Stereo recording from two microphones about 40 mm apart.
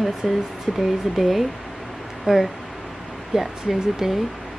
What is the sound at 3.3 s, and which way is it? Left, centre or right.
Speech, centre.